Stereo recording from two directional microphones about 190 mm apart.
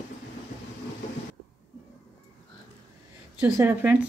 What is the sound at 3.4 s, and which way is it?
Speech, 10° right (ahead or behind).